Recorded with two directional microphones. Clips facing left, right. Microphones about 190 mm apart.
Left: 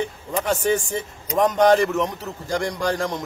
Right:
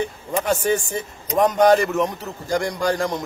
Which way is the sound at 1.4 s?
10° right (ahead or behind).